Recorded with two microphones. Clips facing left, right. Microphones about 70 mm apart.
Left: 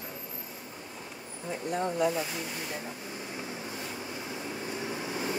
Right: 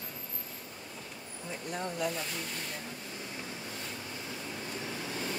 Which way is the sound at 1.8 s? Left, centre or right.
Centre.